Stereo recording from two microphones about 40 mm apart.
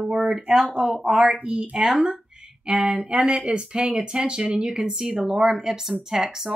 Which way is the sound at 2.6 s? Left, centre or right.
Right.